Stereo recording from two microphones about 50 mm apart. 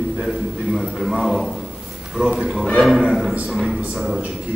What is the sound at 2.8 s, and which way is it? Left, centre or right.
Speech, centre.